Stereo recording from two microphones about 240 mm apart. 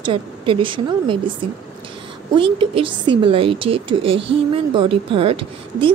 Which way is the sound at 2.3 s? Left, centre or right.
Right.